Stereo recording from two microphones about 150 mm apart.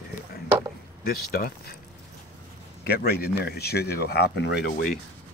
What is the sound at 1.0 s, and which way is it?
Speech, 85° left.